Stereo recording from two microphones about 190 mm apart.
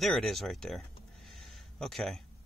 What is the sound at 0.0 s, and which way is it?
Speech, centre (ahead or behind).